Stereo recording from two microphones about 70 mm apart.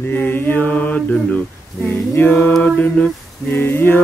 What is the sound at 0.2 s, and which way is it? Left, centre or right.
Mantra, left.